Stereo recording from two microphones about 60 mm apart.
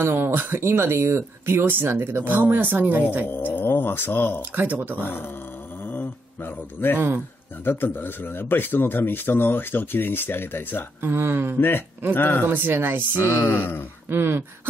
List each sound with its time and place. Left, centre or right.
0.0 s speech: right
3.3 s speech: left
4.4 s speech: right
4.9 s speech: left
5.9 s a sound: left
7.6 s speech: left
11.0 s speech: right
12.1 s speech: left
12.4 s speech: right
13.2 s speech: left
13.6 s speech: left
14.0 s speech: right